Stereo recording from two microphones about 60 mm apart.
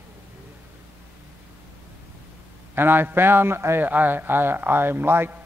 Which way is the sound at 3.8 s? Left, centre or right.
Right.